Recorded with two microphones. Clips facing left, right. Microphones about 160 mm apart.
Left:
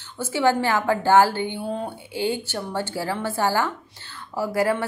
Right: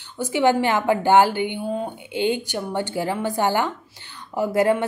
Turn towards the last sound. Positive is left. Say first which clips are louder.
# right 3 dB
turn(degrees=-20)  # may be behind; listen again after turning